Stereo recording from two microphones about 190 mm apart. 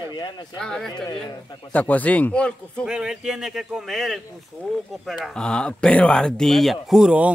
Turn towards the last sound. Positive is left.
turn(degrees=-5)  # may be behind; listen again after turning